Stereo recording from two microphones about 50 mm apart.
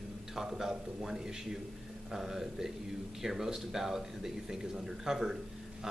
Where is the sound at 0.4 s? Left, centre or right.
Centre.